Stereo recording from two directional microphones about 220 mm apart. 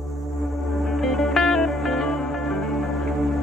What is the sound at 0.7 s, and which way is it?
Music, centre (ahead or behind).